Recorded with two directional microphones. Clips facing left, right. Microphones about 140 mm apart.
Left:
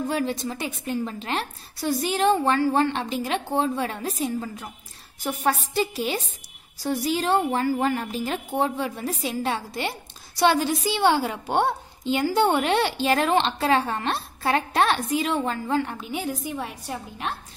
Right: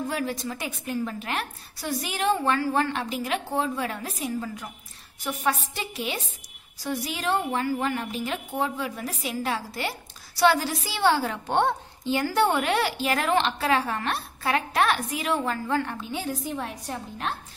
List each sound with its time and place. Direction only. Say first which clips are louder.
0.1 s a woman's voice: left 3 dB; 25° left (ahead or behind)
5.2 s a sound: left 2 dB; 35° left (ahead or behind)
6.8 s a woman's voice: left 5 dB; 35° left (ahead or behind); by 16.7 s 10° left (ahead or behind)